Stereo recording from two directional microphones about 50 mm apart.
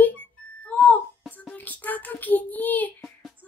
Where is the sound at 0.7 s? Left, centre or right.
Left.